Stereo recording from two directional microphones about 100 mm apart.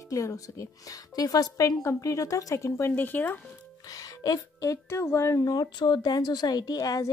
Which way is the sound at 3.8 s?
35° left (ahead or behind).